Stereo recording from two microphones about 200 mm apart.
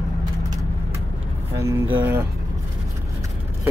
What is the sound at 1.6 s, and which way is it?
Speech, 15° right (ahead or behind).